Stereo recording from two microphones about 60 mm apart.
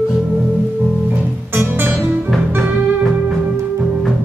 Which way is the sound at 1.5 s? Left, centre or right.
Right.